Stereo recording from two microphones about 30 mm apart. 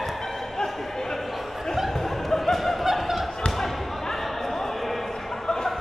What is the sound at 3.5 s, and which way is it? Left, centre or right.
Basketball bounce, centre.